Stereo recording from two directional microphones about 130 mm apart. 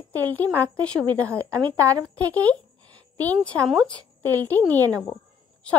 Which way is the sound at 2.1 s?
10° left (ahead or behind).